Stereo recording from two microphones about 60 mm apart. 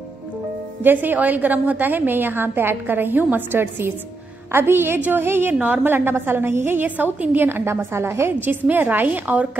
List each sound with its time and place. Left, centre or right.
0.8 s a woman's voice: right